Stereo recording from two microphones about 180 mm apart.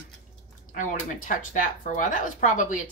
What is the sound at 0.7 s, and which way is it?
A woman's voice, 45° left (ahead or behind).